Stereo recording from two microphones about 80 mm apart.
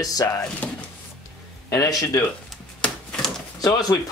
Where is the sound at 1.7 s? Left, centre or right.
Left.